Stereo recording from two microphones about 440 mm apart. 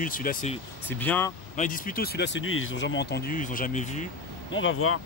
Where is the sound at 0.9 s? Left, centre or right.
Centre.